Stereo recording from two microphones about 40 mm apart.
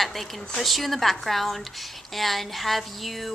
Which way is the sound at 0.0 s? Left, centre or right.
Centre.